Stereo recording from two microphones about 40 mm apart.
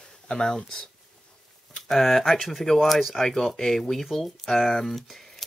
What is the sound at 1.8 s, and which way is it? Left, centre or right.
Speech, centre.